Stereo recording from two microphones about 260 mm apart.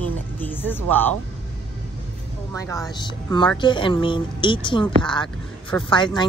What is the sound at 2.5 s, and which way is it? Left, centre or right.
A woman's voice, centre.